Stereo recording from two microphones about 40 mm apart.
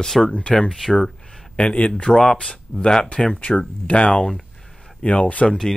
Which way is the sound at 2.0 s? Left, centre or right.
Centre.